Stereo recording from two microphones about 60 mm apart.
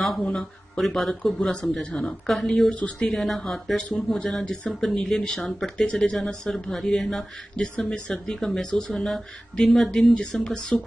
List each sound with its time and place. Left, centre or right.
0.2 s speech: centre
2.2 s speech: centre
2.7 s speech: left
3.1 s speech: centre
7.5 s speech: centre